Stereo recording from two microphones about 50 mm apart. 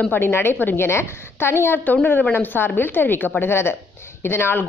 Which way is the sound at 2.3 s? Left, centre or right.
Left.